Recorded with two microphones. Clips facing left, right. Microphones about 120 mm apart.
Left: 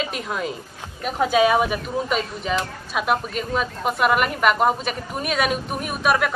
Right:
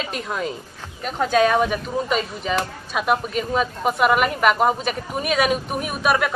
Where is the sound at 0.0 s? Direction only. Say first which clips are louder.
Even; centre (ahead or behind).